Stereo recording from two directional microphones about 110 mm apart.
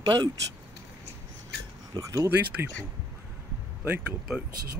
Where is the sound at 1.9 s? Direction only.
40° right (ahead or behind).